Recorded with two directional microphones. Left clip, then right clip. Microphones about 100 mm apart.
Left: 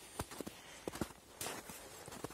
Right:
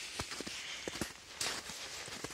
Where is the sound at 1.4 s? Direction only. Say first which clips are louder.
Right 7 dB; 15° left (ahead or behind).